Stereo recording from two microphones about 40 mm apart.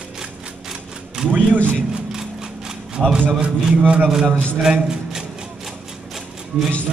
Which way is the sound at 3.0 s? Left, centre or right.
Centre.